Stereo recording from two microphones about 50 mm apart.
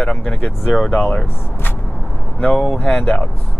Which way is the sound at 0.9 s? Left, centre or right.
Left.